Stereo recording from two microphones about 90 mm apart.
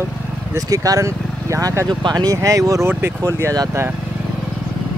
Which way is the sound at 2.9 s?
30° right (ahead or behind).